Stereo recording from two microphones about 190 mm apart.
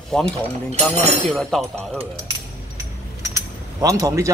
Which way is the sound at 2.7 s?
15° right (ahead or behind).